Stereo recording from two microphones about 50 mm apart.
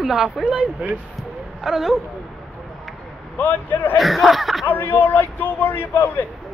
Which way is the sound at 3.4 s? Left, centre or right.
Left.